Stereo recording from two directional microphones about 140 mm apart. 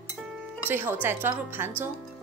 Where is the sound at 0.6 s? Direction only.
15° right (ahead or behind).